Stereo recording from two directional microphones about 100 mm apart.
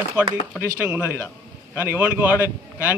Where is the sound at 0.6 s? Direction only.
20° right (ahead or behind).